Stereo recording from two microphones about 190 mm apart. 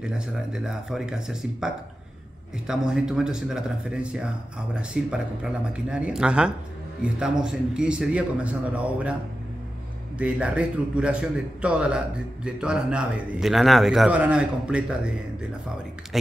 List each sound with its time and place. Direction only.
0.5 s a man's voice: 5° right (ahead or behind)
10.1 s a man's voice: 5° right (ahead or behind)